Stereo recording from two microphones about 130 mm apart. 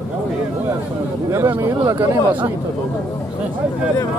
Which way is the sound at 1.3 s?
20° right (ahead or behind).